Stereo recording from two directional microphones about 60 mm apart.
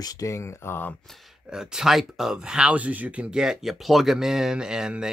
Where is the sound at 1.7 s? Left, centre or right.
Centre.